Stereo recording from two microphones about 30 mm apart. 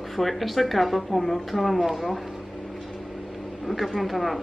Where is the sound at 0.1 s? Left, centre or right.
Centre.